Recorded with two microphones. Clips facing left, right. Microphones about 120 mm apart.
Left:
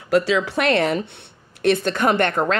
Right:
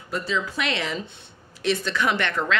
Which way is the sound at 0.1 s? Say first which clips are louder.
Left 12 dB; 75° left (ahead or behind).